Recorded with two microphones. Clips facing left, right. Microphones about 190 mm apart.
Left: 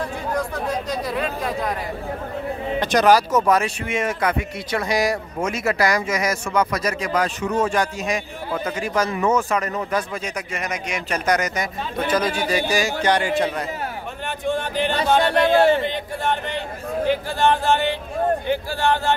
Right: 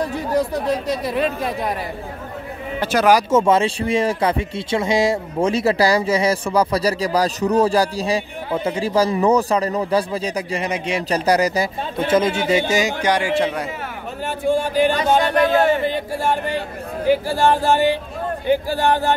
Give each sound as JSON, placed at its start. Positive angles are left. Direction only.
{"t": 1.0, "sound": "speech", "side_deg": -30}
{"t": 2.8, "sound": "speech", "side_deg": -5}
{"t": 3.3, "sound": "speech", "side_deg": -25}